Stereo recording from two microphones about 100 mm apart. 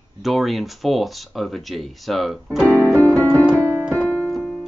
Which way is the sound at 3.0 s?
15° left (ahead or behind).